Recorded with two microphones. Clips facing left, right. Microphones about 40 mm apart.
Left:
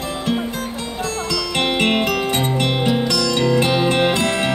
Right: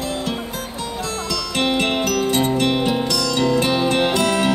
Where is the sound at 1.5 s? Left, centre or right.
Left.